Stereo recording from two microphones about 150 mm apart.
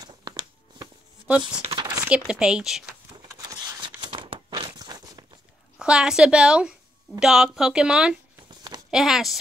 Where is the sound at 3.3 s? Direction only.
25° right (ahead or behind).